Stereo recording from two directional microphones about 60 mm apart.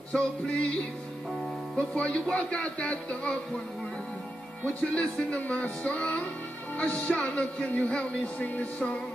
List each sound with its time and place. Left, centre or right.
0.1 s speech: centre
1.8 s speech: centre
4.9 s speech: left